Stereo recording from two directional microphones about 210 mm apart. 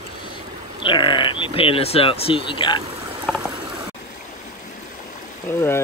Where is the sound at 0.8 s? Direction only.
20° left (ahead or behind).